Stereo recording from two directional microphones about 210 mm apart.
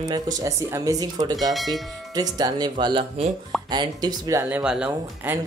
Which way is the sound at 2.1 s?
20° right (ahead or behind).